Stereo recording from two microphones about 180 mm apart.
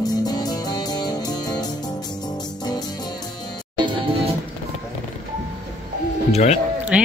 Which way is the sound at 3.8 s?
30° right (ahead or behind).